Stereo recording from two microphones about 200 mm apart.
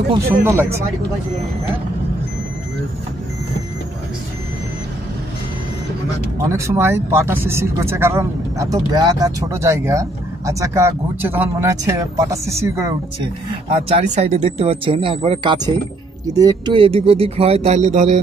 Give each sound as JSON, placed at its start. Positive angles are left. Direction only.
{"t": 0.4, "sound": "speech", "side_deg": -15}
{"t": 6.5, "sound": "speech", "side_deg": -15}
{"t": 13.8, "sound": "speech", "side_deg": -35}